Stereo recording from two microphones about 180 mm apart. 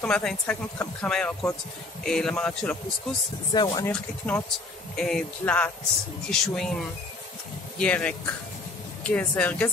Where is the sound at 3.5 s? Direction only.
20° left (ahead or behind).